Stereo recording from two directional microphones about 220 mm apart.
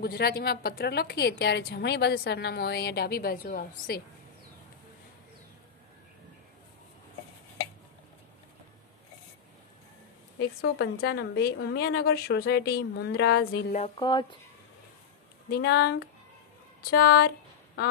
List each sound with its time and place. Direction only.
0.0 s a woman's voice: 45° left (ahead or behind)
10.6 s a woman's voice: 45° left (ahead or behind)
13.7 s speech: 25° left (ahead or behind)
15.5 s a woman's voice: 45° left (ahead or behind)